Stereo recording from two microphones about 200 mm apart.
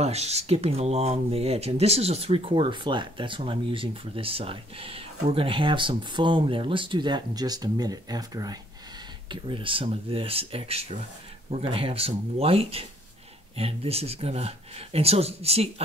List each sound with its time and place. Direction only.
0.0 s speech: 30° right (ahead or behind)